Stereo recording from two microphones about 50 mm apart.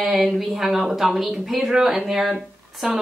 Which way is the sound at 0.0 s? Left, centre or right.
Centre.